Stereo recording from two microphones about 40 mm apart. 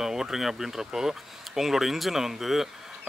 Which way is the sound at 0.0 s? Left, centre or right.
Centre.